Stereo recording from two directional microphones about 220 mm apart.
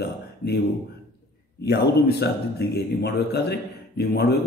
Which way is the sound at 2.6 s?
45° left (ahead or behind).